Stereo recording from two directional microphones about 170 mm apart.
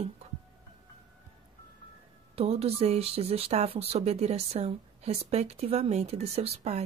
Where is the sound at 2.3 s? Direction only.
35° right (ahead or behind).